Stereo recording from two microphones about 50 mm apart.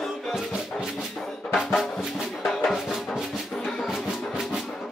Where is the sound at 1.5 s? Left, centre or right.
Centre.